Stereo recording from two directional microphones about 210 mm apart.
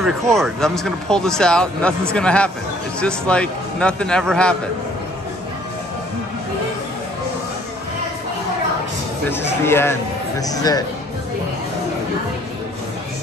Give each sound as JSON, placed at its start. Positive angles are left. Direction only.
{"t": 0.0, "sound": "speech", "side_deg": 0}
{"t": 9.7, "sound": "speech", "side_deg": 10}